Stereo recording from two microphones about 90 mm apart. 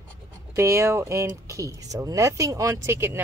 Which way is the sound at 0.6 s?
30° right (ahead or behind).